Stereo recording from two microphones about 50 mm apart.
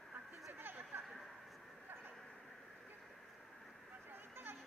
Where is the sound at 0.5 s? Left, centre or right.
Right.